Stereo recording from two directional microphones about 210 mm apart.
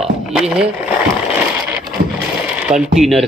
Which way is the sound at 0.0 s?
5° right (ahead or behind).